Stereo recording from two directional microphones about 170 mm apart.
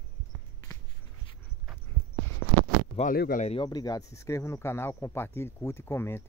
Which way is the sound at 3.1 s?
60° left (ahead or behind).